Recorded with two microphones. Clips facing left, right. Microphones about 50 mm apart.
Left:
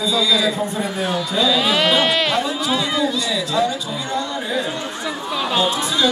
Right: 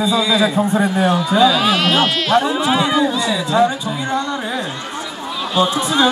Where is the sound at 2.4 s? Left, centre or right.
Right.